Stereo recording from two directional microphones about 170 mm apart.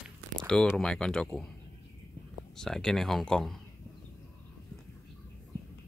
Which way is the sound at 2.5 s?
5° left (ahead or behind).